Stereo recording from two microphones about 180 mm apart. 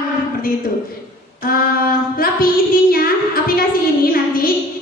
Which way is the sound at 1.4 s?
55° left (ahead or behind).